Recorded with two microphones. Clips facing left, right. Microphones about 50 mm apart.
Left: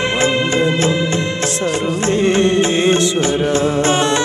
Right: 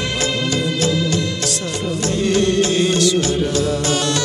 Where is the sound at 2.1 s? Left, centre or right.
Left.